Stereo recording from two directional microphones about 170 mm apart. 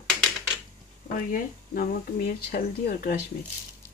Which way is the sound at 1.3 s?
55° left (ahead or behind).